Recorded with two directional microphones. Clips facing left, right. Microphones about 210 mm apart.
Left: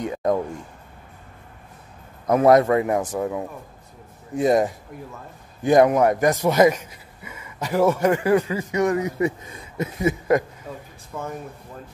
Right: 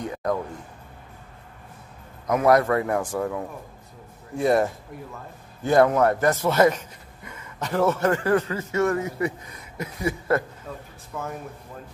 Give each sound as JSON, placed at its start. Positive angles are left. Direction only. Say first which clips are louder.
{"t": 0.0, "sound": "speech", "louder": "left 4 dB", "side_deg": 20}
{"t": 2.2, "sound": "a man's voice", "louder": "left 4 dB", "side_deg": 30}